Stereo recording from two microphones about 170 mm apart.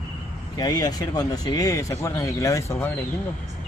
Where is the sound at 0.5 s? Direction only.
25° left (ahead or behind).